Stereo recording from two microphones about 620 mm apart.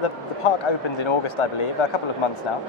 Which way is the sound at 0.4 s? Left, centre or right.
Left.